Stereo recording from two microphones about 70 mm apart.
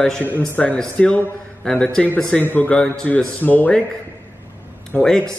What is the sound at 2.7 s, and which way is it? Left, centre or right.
Speech, centre.